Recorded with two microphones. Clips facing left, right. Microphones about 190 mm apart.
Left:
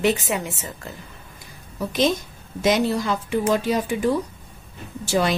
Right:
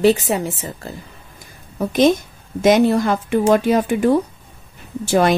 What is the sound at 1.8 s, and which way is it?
Speech, 50° right (ahead or behind).